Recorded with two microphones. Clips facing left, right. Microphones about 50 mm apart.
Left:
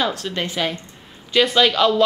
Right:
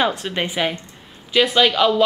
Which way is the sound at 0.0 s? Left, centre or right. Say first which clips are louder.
Right 2 dB; centre.